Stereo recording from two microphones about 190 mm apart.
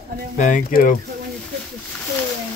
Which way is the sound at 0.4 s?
45° left (ahead or behind).